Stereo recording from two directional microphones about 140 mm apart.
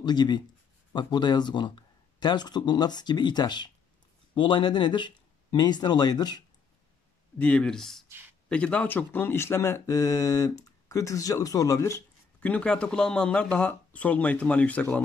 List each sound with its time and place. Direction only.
0.0 s speech: 30° left (ahead or behind)
7.3 s speech: 10° left (ahead or behind)
8.1 s a sound: 15° right (ahead or behind)
8.5 s speech: 10° left (ahead or behind)
12.4 s speech: 10° left (ahead or behind)